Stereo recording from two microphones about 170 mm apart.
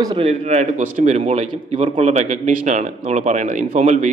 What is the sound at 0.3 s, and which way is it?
A man's voice, 40° right (ahead or behind).